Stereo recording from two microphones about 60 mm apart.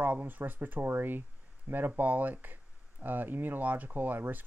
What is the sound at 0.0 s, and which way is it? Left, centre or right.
Speech, right.